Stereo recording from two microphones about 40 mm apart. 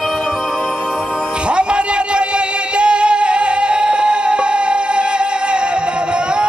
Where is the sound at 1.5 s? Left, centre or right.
Right.